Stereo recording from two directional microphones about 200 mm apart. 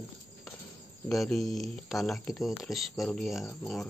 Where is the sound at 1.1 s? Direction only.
Centre (ahead or behind).